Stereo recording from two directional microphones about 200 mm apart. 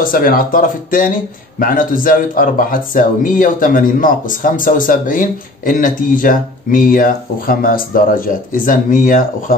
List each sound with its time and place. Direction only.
0.0 s speech: 45° left (ahead or behind)